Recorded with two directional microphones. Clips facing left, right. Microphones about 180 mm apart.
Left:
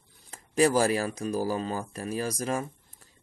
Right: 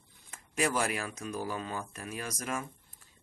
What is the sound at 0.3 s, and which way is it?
Speech, 35° left (ahead or behind).